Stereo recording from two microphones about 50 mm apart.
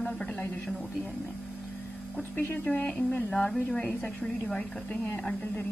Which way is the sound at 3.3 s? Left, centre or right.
Centre.